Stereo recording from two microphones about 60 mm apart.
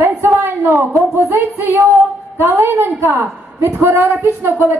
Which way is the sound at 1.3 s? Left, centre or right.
Right.